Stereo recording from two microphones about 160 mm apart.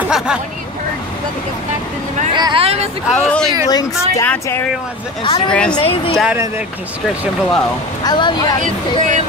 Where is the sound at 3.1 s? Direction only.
5° left (ahead or behind).